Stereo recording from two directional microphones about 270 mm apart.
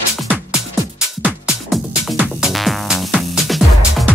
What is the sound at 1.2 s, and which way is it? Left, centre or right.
Music, centre.